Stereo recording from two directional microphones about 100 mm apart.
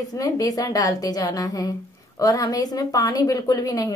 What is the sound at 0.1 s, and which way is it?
A woman's voice, 35° left (ahead or behind).